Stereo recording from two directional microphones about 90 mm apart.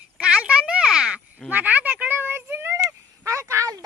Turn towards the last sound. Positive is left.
turn(degrees=-35)  # may be behind; listen again after turning